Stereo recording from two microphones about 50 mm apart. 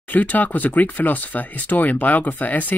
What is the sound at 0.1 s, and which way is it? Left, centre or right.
Speech, left.